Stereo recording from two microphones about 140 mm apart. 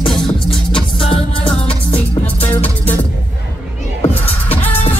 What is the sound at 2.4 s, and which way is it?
Music, 15° left (ahead or behind).